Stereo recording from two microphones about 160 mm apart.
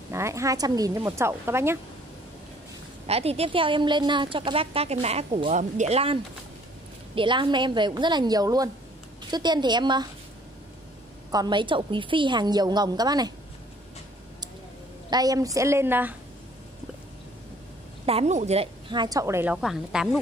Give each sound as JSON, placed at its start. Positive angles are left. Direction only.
{"t": 0.1, "sound": "a woman's voice", "side_deg": -20}
{"t": 3.1, "sound": "a woman's voice", "side_deg": -40}
{"t": 7.2, "sound": "a woman's voice", "side_deg": -30}
{"t": 11.3, "sound": "a woman's voice", "side_deg": -30}
{"t": 15.0, "sound": "a woman's voice", "side_deg": -25}
{"t": 18.0, "sound": "a woman's voice", "side_deg": -40}